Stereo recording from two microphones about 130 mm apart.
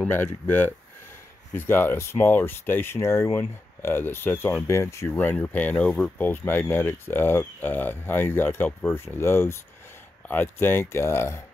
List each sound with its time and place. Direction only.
0.1 s speech: 15° left (ahead or behind)